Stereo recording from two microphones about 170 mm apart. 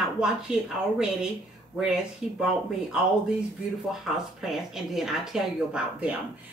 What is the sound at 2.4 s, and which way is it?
Speech, 5° right (ahead or behind).